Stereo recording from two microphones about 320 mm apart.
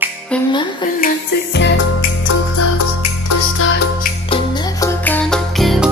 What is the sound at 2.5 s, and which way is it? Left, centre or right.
Music, left.